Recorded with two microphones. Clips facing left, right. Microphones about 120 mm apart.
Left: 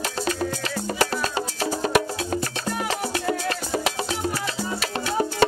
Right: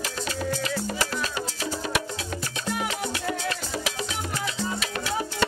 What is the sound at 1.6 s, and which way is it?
Music, 45° left (ahead or behind).